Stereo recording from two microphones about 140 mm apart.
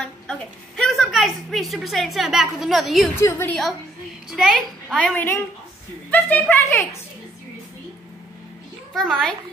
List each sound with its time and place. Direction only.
0.0 s a sound: 5° left (ahead or behind)
3.2 s a child's voice: 15° left (ahead or behind)
4.3 s a child's voice: 5° left (ahead or behind); by 7.0 s 20° left (ahead or behind)
8.9 s a woman's voice: 5° left (ahead or behind)